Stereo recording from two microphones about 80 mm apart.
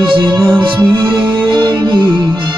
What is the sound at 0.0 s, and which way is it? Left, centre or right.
Music, right.